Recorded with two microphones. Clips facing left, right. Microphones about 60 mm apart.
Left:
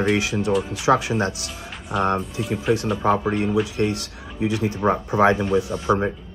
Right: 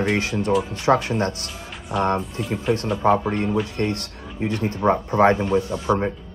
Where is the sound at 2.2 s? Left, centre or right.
Centre.